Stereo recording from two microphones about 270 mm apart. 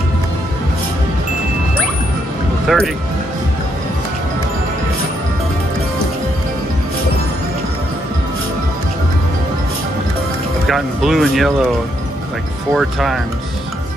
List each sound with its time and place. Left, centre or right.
2.7 s speech: centre
10.7 s speech: centre
12.7 s speech: centre